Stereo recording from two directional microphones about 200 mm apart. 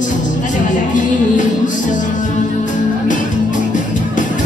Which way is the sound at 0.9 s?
40° left (ahead or behind).